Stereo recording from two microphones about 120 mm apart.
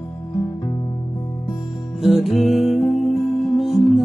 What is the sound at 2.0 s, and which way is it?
Music, centre (ahead or behind).